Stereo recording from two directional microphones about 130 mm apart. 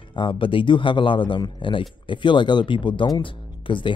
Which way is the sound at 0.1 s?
40° left (ahead or behind).